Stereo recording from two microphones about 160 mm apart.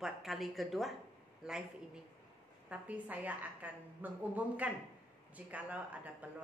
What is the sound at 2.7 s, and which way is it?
A woman's voice, 10° right (ahead or behind).